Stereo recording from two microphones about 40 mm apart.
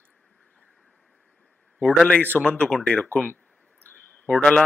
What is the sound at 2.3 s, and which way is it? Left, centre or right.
Speech, left.